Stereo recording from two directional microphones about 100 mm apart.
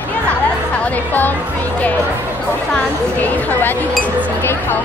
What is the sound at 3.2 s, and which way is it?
Speech, 20° left (ahead or behind).